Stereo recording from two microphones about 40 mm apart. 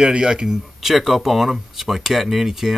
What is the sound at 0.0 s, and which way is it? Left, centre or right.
Speech, right.